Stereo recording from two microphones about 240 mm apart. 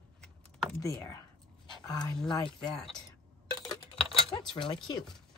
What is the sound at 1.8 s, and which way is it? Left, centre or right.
Speech, centre.